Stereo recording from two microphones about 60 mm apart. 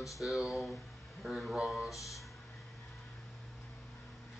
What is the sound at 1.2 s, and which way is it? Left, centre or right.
Speech, centre.